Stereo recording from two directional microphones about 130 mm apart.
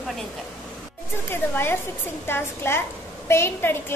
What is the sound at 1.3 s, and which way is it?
A woman's voice, 15° left (ahead or behind).